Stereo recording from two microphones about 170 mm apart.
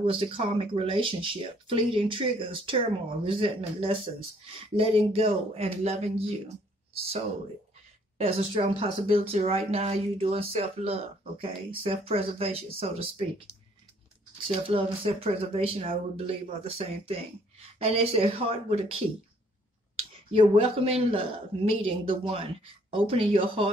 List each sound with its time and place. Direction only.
0.0 s speech: 35° right (ahead or behind)
8.2 s speech: 35° right (ahead or behind)
14.4 s speech: 35° right (ahead or behind)
20.0 s speech: 35° right (ahead or behind)